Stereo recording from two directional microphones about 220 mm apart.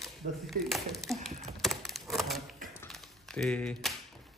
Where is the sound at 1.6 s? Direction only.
Centre (ahead or behind).